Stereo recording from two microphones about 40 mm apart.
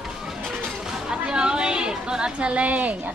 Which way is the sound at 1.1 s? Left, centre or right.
Right.